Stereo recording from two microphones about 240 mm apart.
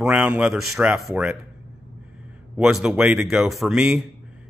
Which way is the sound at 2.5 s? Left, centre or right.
Centre.